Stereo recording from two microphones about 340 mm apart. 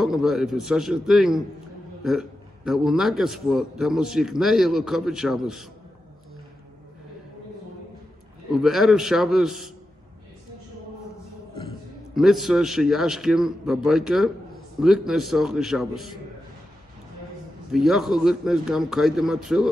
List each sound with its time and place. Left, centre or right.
0.0 s a man's voice: centre
8.5 s a man's voice: centre
12.1 s a man's voice: centre
17.6 s a man's voice: centre